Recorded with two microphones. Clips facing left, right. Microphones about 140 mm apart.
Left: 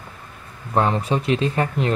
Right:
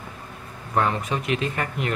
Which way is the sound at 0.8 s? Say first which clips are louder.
Left 4 dB; 30° left (ahead or behind).